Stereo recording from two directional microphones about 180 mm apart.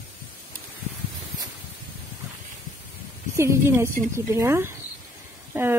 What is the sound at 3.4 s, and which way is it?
Speech, 15° right (ahead or behind).